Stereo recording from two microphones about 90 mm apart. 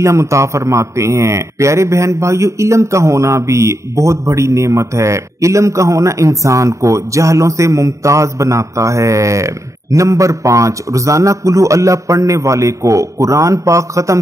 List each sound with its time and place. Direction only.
0.0 s a man's voice: 35° right (ahead or behind)